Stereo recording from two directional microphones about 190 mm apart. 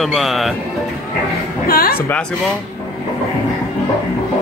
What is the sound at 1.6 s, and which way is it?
Speech, 50° left (ahead or behind).